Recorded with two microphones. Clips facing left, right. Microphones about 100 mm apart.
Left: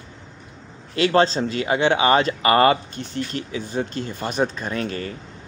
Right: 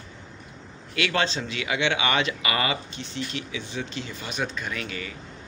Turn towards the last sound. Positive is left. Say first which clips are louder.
# left 7 dB
turn(degrees=40)  # may be behind; listen again after turning